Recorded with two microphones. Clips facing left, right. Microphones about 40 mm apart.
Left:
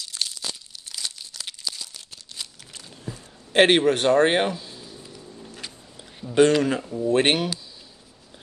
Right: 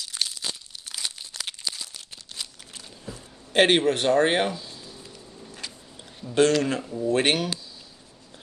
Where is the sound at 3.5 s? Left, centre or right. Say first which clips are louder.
Left 2 dB; centre.